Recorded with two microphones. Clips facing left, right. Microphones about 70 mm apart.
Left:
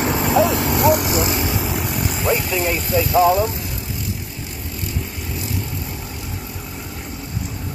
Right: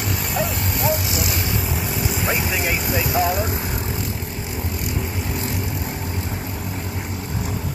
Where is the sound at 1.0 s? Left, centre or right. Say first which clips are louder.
Left 6 dB; left.